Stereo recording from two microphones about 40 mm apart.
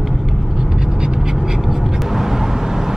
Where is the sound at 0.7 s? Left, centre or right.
Centre.